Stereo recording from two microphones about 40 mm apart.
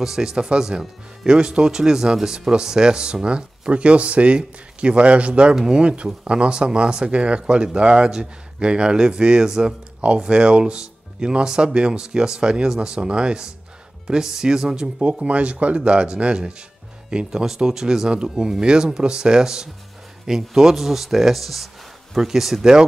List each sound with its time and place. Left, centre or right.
0.0 s speech: centre
15.2 s speech: right
17.3 s speech: centre